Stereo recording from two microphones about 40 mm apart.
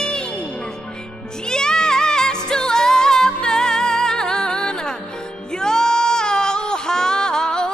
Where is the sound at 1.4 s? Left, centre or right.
Centre.